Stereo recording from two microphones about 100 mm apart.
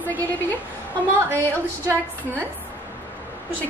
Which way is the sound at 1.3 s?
20° left (ahead or behind).